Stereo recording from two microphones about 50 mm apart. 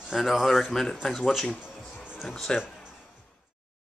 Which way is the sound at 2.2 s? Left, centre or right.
Centre.